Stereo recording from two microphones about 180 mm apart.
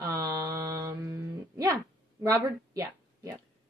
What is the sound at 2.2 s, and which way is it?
Speech, 20° right (ahead or behind).